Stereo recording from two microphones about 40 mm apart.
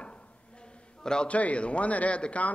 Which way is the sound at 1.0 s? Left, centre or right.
Left.